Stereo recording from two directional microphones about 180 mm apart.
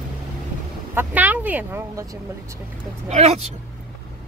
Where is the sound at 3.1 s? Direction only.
40° right (ahead or behind).